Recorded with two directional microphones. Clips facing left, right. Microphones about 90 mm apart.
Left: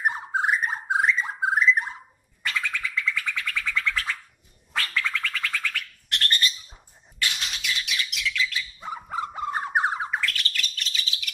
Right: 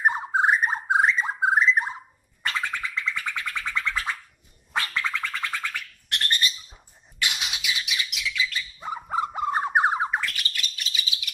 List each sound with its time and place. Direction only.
0.0 s bird: 30° right (ahead or behind)
2.4 s music: 35° right (ahead or behind)
4.7 s bird: 25° right (ahead or behind); by 9.0 s centre (ahead or behind)
9.1 s bird: 15° right (ahead or behind)
10.3 s bird: 10° right (ahead or behind)